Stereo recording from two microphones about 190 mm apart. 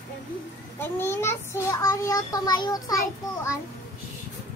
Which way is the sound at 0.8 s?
15° left (ahead or behind).